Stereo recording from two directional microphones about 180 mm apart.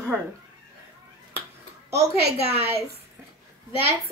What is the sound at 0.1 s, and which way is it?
Speech, 10° right (ahead or behind).